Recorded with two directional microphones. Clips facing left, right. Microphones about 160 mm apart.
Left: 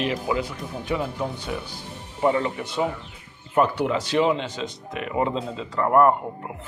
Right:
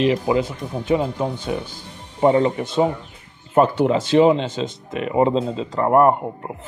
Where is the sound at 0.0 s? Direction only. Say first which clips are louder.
Right 7 dB; 25° right (ahead or behind).